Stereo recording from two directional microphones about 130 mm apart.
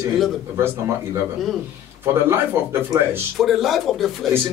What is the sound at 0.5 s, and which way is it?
Speech, 20° right (ahead or behind).